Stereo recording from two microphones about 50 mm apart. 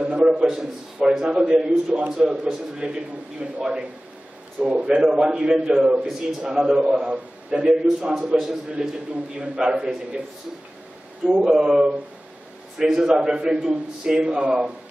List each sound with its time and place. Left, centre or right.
0.0 s a man's voice: right
11.2 s a man's voice: centre